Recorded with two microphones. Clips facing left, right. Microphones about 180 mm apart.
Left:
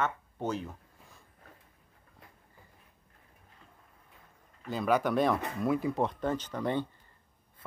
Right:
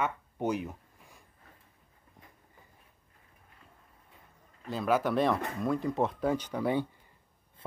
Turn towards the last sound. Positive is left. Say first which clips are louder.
# right 2 dB
turn(degrees=-10)  # may be behind; listen again after turning